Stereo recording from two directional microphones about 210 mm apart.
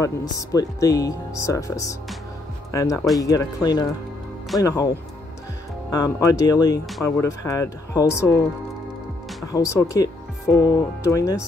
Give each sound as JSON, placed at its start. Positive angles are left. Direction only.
{"t": 0.0, "sound": "speech", "side_deg": 15}
{"t": 5.9, "sound": "speech", "side_deg": 15}
{"t": 9.5, "sound": "speech", "side_deg": 15}